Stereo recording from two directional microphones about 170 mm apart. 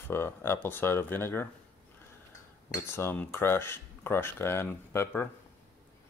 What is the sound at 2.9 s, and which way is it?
Speech, 15° left (ahead or behind).